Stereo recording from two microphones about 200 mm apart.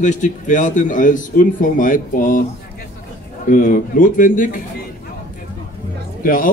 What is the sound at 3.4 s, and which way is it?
Speech, 45° left (ahead or behind).